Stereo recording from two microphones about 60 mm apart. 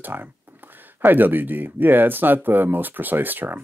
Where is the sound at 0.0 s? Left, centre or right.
Right.